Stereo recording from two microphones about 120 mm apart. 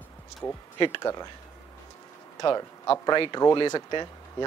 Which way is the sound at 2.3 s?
30° left (ahead or behind).